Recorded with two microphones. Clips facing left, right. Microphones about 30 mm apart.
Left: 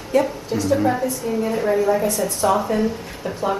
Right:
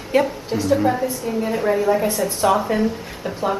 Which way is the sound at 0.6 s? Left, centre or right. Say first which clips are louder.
Right 1 dB; centre.